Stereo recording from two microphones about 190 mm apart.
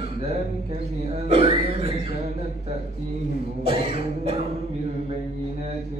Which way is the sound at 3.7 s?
30° right (ahead or behind).